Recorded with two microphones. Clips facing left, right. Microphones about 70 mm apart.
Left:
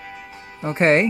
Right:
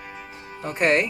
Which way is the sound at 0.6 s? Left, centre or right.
Left.